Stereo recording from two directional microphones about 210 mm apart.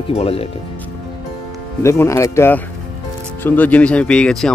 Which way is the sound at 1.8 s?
15° left (ahead or behind).